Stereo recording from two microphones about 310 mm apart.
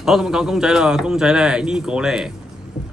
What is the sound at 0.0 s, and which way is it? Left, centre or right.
Speech, centre.